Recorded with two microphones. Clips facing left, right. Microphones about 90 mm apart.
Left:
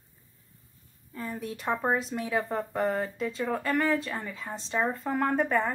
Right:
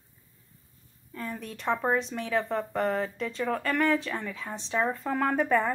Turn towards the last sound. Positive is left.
turn(degrees=0)  # may be behind; listen again after turning